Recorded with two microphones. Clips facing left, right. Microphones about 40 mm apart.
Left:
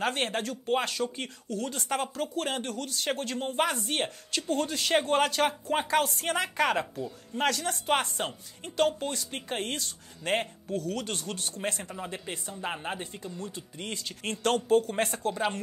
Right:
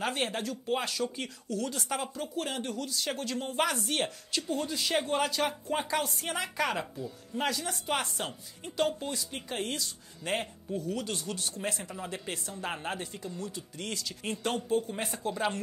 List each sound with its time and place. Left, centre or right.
0.0 s speech: left
2.0 s speech: left
4.6 s speech: left
10.7 s speech: left
12.3 s speech: centre
13.0 s speech: left
14.0 s speech: left
15.0 s speech: left